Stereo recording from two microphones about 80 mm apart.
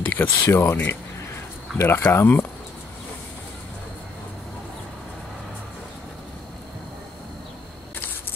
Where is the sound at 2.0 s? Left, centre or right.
Left.